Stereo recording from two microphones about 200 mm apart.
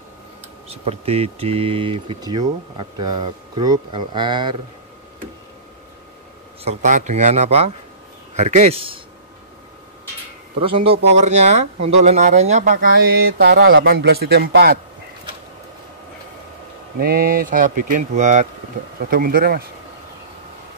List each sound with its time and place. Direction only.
0.7 s speech: 30° right (ahead or behind)
6.6 s speech: 35° right (ahead or behind)
10.6 s speech: 25° right (ahead or behind); by 14.8 s 50° right (ahead or behind)
17.0 s speech: 50° right (ahead or behind)